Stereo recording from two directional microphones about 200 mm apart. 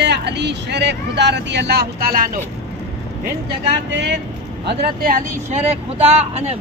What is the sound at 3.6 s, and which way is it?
Speech, 60° right (ahead or behind).